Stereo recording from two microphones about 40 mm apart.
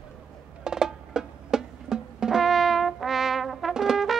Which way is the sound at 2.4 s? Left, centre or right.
Centre.